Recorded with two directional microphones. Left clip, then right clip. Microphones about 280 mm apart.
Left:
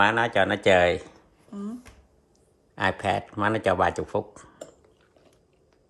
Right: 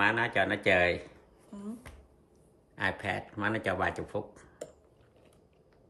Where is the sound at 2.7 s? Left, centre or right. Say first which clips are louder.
Left 8 dB; left.